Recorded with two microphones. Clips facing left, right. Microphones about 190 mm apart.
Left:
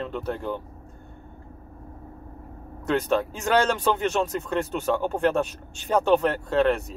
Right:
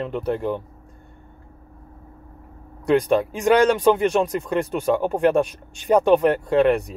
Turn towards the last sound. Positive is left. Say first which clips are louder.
# right 4 dB
turn(degrees=-15)  # may be behind; listen again after turning